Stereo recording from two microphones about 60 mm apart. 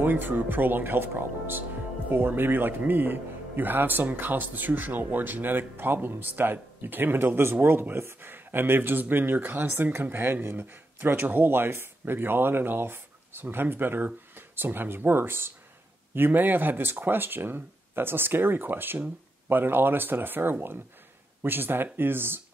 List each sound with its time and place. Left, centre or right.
0.0 s speech: right